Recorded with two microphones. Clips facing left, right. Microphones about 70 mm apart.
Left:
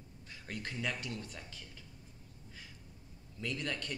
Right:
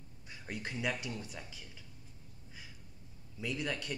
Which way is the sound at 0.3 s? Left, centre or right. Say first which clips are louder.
Right 1 dB; centre.